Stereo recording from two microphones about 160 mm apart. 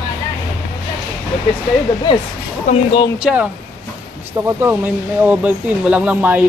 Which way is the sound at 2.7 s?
40° left (ahead or behind).